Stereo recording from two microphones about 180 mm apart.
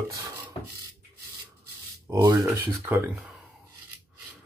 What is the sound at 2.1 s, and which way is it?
Speech, 15° right (ahead or behind).